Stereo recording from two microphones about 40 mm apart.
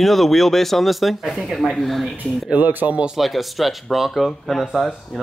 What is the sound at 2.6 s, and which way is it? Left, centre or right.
Speech, right.